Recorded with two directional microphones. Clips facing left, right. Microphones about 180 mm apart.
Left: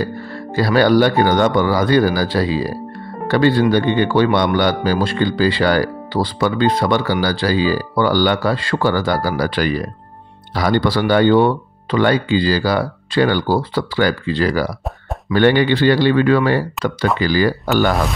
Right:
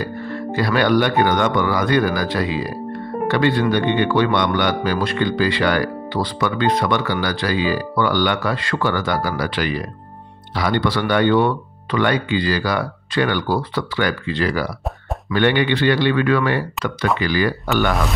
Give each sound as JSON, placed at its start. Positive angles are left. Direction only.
{"t": 0.6, "sound": "speech", "side_deg": 35}